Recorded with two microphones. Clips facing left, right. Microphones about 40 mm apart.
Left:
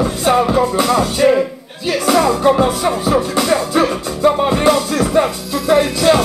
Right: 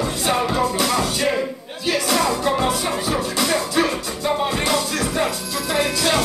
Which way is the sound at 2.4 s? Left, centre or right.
Left.